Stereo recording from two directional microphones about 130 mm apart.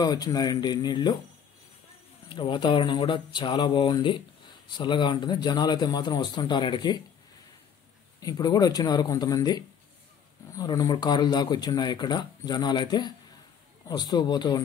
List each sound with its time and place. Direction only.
0.0 s a man's voice: 30° left (ahead or behind)
2.2 s a man's voice: 40° left (ahead or behind)
8.2 s a man's voice: 30° left (ahead or behind)